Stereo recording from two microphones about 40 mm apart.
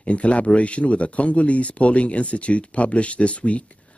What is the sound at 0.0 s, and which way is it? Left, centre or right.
Speech, left.